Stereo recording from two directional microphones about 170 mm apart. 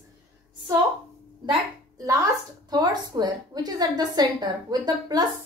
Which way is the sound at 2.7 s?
25° right (ahead or behind).